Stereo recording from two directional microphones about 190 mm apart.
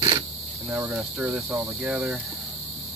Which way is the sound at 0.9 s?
Centre (ahead or behind).